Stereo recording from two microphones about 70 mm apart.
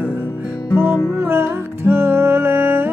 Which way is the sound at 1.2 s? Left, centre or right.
Right.